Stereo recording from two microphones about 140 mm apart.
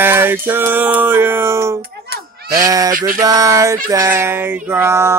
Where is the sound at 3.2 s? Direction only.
25° right (ahead or behind).